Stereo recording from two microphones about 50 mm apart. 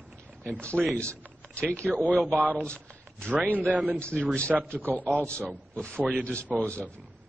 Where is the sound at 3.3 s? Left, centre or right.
Right.